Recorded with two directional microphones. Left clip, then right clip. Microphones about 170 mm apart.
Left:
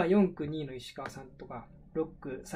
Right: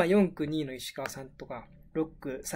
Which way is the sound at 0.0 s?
20° right (ahead or behind).